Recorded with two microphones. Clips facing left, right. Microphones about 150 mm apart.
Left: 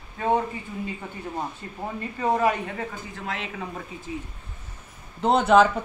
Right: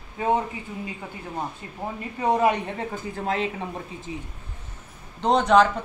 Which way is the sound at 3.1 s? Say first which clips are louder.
Right 7 dB; 35° right (ahead or behind).